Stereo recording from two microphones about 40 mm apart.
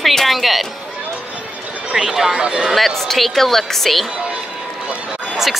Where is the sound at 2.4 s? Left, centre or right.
Right.